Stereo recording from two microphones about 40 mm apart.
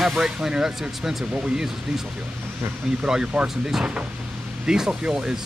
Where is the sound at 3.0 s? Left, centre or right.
Centre.